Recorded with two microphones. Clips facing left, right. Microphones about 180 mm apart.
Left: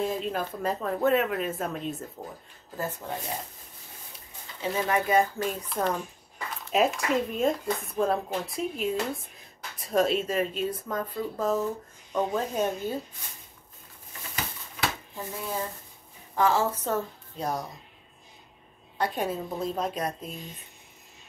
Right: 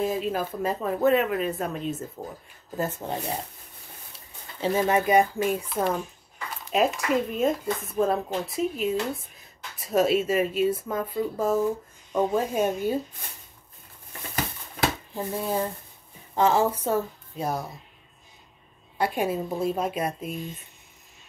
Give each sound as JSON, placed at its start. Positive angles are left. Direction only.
{"t": 0.0, "sound": "speech", "side_deg": -5}
{"t": 2.8, "sound": "speech", "side_deg": -25}
{"t": 4.6, "sound": "speech", "side_deg": -25}
{"t": 5.7, "sound": "speech", "side_deg": -5}
{"t": 15.1, "sound": "speech", "side_deg": -30}
{"t": 16.3, "sound": "a woman's voice", "side_deg": -20}
{"t": 16.7, "sound": "speech", "side_deg": -10}
{"t": 18.9, "sound": "speech", "side_deg": -10}